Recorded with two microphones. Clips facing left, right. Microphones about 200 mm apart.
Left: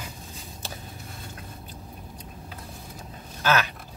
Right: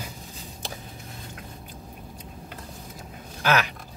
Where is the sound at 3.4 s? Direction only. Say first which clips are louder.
Right 1 dB; 15° right (ahead or behind).